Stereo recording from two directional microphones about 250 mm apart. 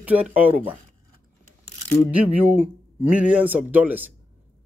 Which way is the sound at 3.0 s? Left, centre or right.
Centre.